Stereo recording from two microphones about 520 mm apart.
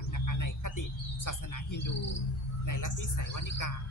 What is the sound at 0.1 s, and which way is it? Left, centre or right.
Bird, left.